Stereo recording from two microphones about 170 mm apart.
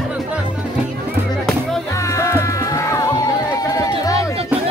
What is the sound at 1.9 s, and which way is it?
Music, 15° left (ahead or behind).